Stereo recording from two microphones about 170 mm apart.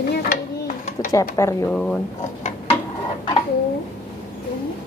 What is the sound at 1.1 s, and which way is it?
Speech, 20° left (ahead or behind).